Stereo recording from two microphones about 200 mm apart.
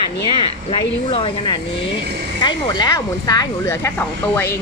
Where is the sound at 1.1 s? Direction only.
25° left (ahead or behind).